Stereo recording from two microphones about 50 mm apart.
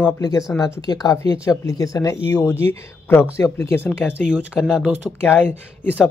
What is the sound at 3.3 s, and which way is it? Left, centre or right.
Speech, left.